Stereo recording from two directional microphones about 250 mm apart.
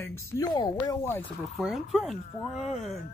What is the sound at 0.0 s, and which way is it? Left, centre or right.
Speech, centre.